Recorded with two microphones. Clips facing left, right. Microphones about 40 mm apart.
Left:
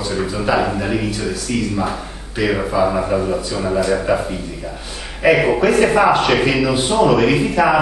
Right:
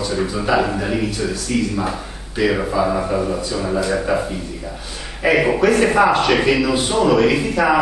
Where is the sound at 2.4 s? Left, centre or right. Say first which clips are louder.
Left 1 dB; centre.